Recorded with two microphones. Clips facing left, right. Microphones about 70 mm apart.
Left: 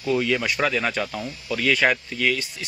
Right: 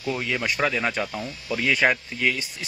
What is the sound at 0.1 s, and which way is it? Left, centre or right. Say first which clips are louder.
Speech: left 4 dB; centre.